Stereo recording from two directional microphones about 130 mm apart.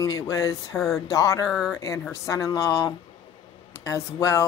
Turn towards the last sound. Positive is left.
turn(degrees=25)  # may be behind; listen again after turning